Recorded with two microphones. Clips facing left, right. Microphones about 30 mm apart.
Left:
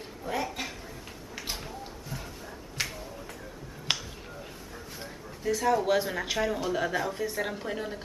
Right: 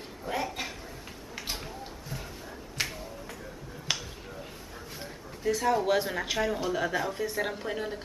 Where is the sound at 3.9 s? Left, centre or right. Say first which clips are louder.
Left 2 dB; left.